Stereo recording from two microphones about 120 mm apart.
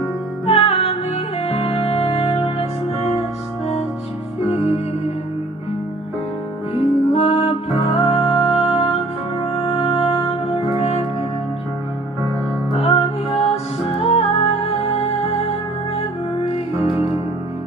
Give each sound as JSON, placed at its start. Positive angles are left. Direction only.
{"t": 0.5, "sound": "music", "side_deg": 55}
{"t": 6.8, "sound": "music", "side_deg": 55}
{"t": 12.7, "sound": "music", "side_deg": 60}